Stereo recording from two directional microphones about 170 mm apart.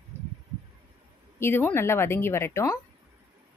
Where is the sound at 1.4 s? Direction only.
15° left (ahead or behind).